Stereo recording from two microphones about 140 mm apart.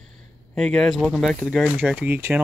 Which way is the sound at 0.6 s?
5° left (ahead or behind).